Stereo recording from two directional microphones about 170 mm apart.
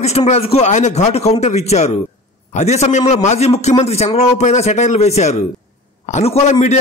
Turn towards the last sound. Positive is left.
turn(degrees=45)  # may be behind; listen again after turning